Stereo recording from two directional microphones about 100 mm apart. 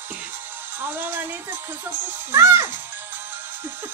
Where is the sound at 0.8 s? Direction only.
20° right (ahead or behind).